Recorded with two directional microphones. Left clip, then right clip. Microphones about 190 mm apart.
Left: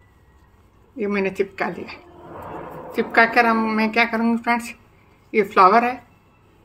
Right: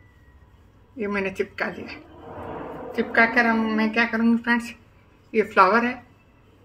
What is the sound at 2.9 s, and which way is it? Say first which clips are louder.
A woman's voice: left 3 dB; 45° left (ahead or behind).